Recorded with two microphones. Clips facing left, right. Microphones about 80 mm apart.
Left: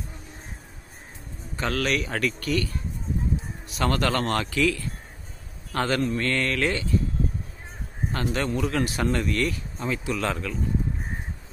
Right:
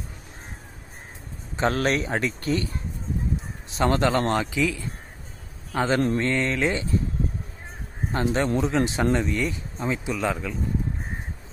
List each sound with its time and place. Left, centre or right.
1.6 s speech: right
3.7 s a man's voice: right
8.1 s speech: right
10.1 s a man's voice: centre